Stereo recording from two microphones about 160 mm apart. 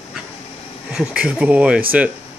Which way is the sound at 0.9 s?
5° right (ahead or behind).